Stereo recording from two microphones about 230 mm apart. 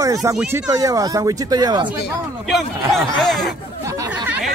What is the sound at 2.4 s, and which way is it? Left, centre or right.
Speech, centre.